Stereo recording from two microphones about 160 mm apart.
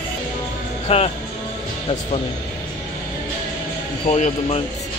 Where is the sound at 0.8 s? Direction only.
40° left (ahead or behind).